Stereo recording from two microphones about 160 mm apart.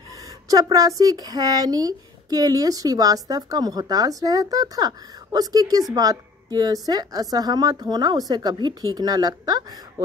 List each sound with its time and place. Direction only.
0.5 s speech: 20° right (ahead or behind)